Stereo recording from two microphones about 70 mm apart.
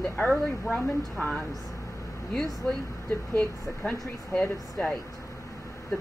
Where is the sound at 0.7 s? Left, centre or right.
Left.